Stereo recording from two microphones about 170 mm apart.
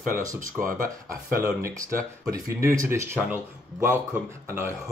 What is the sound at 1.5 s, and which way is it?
Speech, 15° right (ahead or behind).